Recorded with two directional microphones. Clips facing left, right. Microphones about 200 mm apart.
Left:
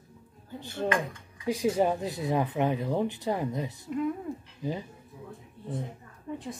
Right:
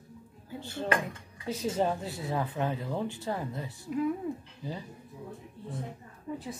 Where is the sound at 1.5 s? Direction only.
15° left (ahead or behind).